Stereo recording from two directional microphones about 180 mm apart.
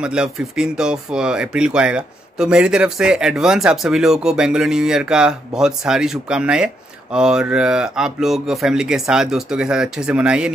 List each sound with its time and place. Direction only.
0.0 s speech: 5° right (ahead or behind)